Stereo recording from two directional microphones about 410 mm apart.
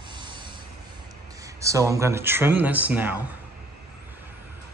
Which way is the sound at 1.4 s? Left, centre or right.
Centre.